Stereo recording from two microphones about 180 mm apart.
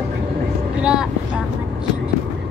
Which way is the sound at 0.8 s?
5° right (ahead or behind).